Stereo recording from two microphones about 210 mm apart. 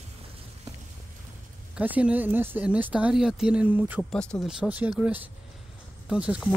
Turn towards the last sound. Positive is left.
turn(degrees=-5)  # may be behind; listen again after turning